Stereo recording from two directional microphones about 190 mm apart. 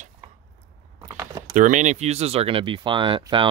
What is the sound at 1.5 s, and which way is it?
Speech, 40° right (ahead or behind).